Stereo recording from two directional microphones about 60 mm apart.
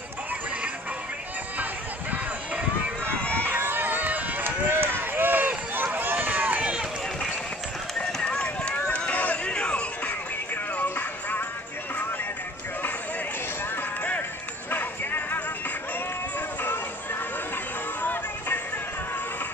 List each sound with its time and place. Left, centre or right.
1.6 s run: right
3.3 s run: right
8.0 s run: centre
10.0 s music: left
14.7 s music: left
16.3 s a sound: left
18.0 s music: left